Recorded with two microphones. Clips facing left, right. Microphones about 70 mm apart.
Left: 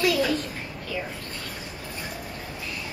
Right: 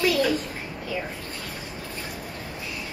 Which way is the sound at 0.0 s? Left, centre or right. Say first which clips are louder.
Right 1 dB; centre.